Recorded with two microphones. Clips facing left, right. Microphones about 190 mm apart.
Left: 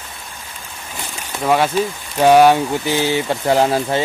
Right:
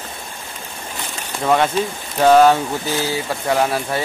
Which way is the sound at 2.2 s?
10° left (ahead or behind).